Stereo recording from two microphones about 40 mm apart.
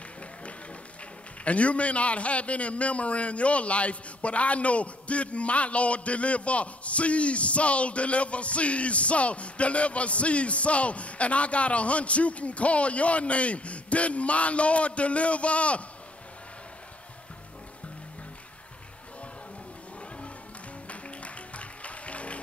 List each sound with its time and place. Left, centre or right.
1.4 s a man's voice: left
20.9 s music: left